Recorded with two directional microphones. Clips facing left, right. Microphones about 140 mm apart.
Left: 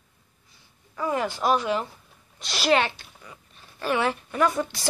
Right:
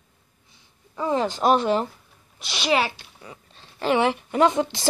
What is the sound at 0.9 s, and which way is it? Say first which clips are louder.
Speech: right 3 dB; 25° right (ahead or behind).